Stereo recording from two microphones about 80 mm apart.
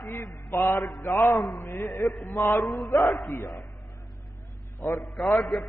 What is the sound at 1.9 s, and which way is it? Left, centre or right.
Mantra, centre.